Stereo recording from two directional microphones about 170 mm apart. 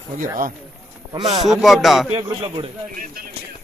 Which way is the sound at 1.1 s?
25° right (ahead or behind).